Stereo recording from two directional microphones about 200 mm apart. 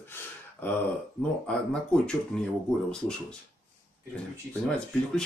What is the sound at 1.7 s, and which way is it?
Speech, 5° left (ahead or behind).